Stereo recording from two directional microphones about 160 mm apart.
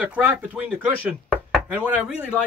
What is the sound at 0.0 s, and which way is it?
Speech, 10° right (ahead or behind).